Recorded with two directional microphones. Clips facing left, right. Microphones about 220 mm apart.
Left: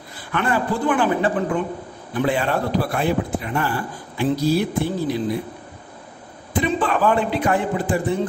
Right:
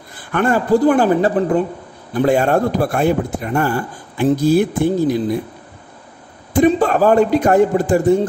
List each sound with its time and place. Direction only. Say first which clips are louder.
0.3 s a man's voice: right 7 dB; 45° right (ahead or behind)
6.5 s a man's voice: right 8 dB; 45° right (ahead or behind)